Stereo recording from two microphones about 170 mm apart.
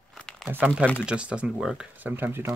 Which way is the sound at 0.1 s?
5° left (ahead or behind).